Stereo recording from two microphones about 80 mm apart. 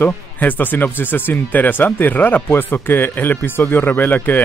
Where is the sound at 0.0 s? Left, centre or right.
Left.